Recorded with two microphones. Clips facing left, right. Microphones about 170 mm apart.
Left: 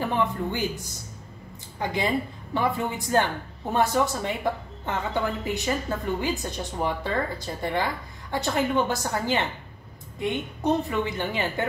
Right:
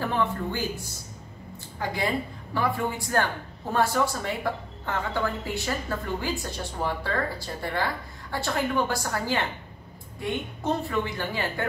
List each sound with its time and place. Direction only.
0.3 s speech: 20° left (ahead or behind)
1.8 s speech: 20° left (ahead or behind)